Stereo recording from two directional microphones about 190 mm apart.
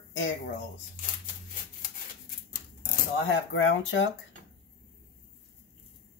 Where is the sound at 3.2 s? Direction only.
85° left.